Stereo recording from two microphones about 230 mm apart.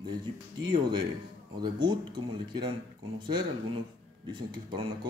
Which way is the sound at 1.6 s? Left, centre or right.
Centre.